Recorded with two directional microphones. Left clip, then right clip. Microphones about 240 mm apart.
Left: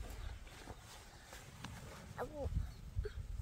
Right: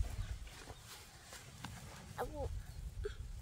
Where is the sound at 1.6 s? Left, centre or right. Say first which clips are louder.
Right 1 dB; centre.